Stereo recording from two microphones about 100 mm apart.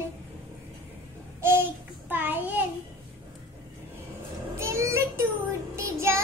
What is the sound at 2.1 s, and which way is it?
Speech, 20° right (ahead or behind).